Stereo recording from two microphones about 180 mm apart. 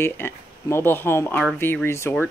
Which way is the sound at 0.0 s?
15° left (ahead or behind).